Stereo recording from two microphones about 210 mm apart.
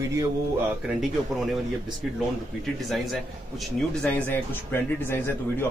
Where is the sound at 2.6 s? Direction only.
Centre (ahead or behind).